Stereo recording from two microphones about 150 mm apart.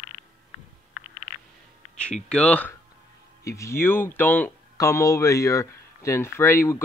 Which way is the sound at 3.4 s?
20° left (ahead or behind).